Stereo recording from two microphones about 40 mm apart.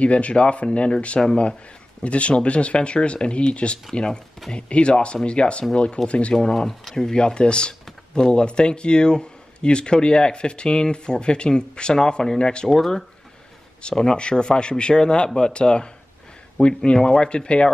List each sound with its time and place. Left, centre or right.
0.0 s speech: left
6.3 s speech: centre
6.7 s speech: centre
7.1 s speech: left
12.6 s speech: centre
13.8 s speech: left